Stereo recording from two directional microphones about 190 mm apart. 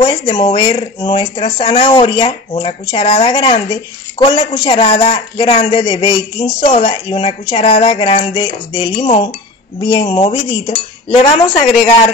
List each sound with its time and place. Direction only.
0.0 s a woman's voice: 25° left (ahead or behind)